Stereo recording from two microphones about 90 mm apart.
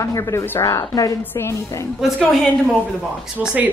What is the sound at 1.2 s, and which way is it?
Speech, 30° left (ahead or behind).